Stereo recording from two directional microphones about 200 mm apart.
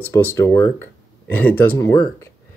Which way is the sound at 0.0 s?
10° left (ahead or behind).